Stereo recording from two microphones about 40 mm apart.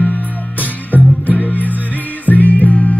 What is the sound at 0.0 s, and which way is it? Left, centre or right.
Music, left.